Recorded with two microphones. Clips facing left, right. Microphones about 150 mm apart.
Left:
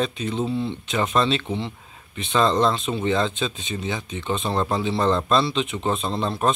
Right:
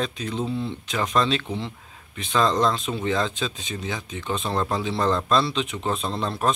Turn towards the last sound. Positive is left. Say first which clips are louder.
# left 2 dB
turn(degrees=0)  # may be behind; listen again after turning